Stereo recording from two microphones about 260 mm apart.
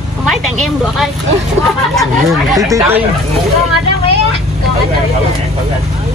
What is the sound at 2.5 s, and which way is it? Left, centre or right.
Speech, centre.